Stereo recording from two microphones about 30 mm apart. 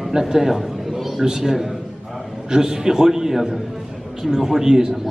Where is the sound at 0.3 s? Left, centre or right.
Centre.